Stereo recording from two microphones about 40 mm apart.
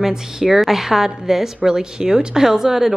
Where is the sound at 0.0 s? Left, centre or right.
Centre.